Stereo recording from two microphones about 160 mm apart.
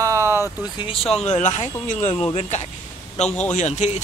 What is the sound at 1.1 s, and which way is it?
Speech, 50° left (ahead or behind).